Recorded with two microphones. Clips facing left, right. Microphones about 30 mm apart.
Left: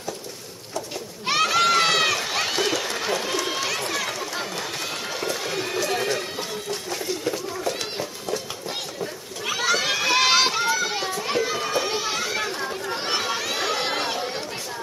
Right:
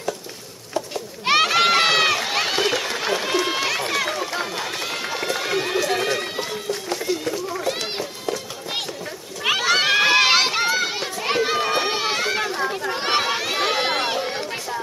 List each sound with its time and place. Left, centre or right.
0.7 s run: right
5.8 s music: right
7.5 s children playing: centre
9.7 s children playing: right
10.1 s run: right
11.2 s children playing: right
12.0 s run: right
12.5 s chatter: right
13.0 s run: right